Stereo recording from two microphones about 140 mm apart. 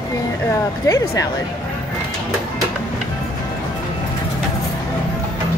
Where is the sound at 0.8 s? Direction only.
25° left (ahead or behind).